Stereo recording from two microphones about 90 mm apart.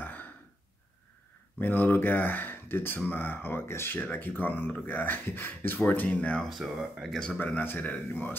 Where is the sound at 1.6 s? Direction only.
20° left (ahead or behind).